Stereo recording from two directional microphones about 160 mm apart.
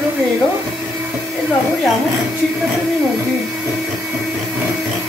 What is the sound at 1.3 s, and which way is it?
Vacuum cleaner, centre (ahead or behind).